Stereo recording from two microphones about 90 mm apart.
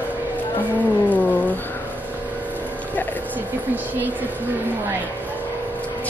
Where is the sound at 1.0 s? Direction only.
15° left (ahead or behind).